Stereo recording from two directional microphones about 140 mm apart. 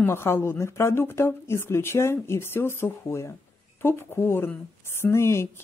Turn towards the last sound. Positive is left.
turn(degrees=20)  # may be behind; listen again after turning